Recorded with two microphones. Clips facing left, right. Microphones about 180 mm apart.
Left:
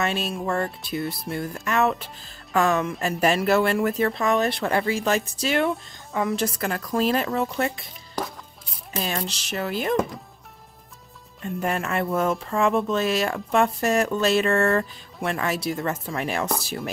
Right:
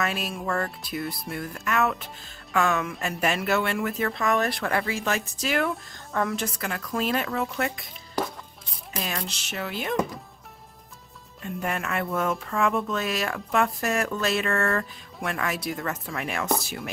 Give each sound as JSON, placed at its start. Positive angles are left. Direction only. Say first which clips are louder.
{"t": 0.4, "sound": "speech", "louder": "left 3 dB", "side_deg": 25}
{"t": 1.0, "sound": "speech", "louder": "left 3 dB", "side_deg": 0}
{"t": 1.3, "sound": "a woman's voice", "louder": "left 3 dB", "side_deg": 30}
{"t": 8.2, "sound": "music", "louder": "right 2 dB", "side_deg": 0}
{"t": 8.9, "sound": "a sound", "louder": "left 4 dB", "side_deg": 30}
{"t": 9.3, "sound": "speech", "louder": "left 5 dB", "side_deg": 0}
{"t": 9.6, "sound": "a woman's voice", "louder": "left 5 dB", "side_deg": 40}
{"t": 11.6, "sound": "a woman's voice", "louder": "left 4 dB", "side_deg": 30}